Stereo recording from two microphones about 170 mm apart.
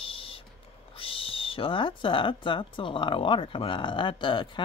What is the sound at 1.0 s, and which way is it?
Speech, 30° left (ahead or behind).